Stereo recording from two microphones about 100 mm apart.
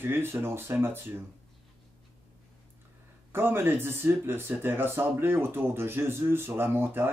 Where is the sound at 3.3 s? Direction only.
20° right (ahead or behind).